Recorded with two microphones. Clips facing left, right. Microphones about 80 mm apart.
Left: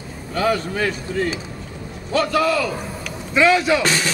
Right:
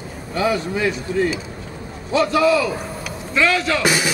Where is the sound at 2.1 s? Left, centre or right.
Left.